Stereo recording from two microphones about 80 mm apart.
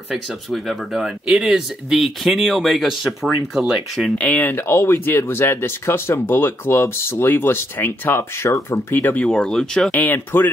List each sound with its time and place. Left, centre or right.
0.5 s speech: centre
4.2 s speech: left
8.7 s speech: left
9.3 s speech: centre
9.8 s speech: left